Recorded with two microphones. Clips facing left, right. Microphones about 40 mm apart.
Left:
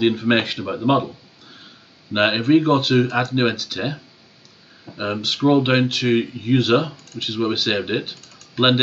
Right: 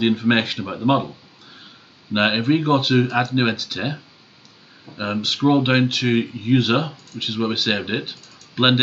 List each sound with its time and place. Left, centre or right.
0.0 s speech: centre
2.1 s speech: centre
3.1 s speech: centre
3.3 s speech: centre